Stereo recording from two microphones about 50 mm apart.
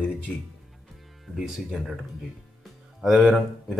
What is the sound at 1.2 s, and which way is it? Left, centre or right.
Speech, centre.